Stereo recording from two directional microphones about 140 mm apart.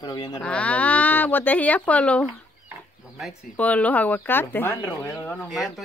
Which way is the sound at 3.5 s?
10° left (ahead or behind).